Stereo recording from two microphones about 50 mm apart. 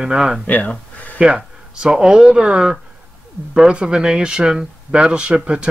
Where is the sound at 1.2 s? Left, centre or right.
Centre.